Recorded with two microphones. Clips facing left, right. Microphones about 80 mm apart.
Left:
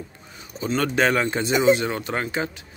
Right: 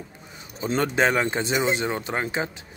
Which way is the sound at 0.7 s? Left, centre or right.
Right.